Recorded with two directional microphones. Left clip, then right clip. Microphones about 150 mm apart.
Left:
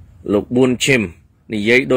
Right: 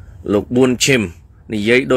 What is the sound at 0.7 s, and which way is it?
Speech, 10° left (ahead or behind).